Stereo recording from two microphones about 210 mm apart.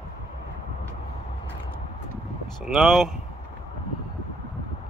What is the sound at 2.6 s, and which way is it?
Speech, centre (ahead or behind).